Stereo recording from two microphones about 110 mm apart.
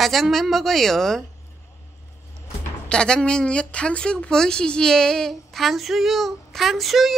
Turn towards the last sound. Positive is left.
turn(degrees=0)  # may be behind; listen again after turning